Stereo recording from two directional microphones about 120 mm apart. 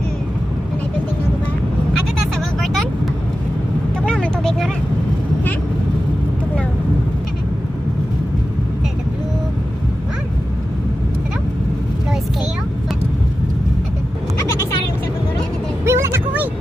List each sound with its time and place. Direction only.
2.6 s vehicle: centre (ahead or behind)
4.0 s vehicle: 10° left (ahead or behind)
15.8 s a sound: 20° right (ahead or behind)